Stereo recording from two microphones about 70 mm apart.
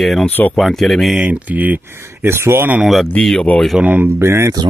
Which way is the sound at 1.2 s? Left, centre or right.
Right.